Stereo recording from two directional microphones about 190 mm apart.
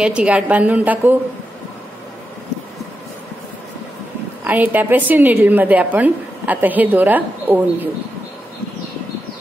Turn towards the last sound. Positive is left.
turn(degrees=-10)  # may be behind; listen again after turning